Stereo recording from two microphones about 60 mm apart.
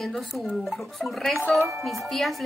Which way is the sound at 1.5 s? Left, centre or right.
Right.